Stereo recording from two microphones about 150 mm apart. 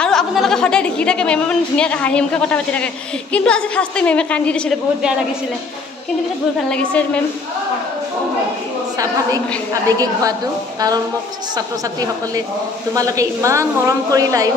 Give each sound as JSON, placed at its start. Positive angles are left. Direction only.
{"t": 0.0, "sound": "a woman's voice", "side_deg": 0}
{"t": 6.7, "sound": "a woman's voice", "side_deg": 10}
{"t": 8.9, "sound": "a woman's voice", "side_deg": -25}
{"t": 12.9, "sound": "a woman's voice", "side_deg": -20}